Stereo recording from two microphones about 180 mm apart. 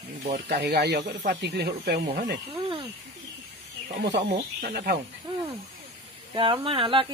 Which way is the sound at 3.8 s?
70° right (ahead or behind).